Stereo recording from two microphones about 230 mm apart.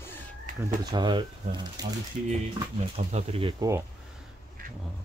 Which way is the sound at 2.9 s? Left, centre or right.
Right.